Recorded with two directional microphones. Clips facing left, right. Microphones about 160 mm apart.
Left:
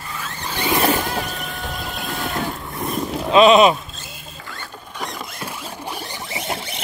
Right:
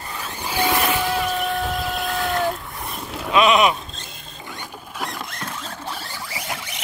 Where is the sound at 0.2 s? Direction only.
10° right (ahead or behind).